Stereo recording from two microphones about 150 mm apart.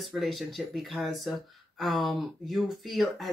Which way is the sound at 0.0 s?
Centre (ahead or behind).